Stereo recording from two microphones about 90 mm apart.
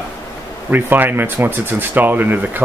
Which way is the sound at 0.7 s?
20° right (ahead or behind).